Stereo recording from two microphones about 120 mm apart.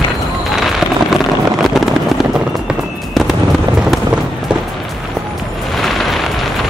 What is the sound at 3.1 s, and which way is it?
Fireworks, centre (ahead or behind).